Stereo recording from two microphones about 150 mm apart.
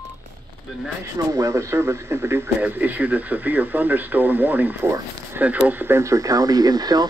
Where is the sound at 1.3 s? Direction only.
20° right (ahead or behind).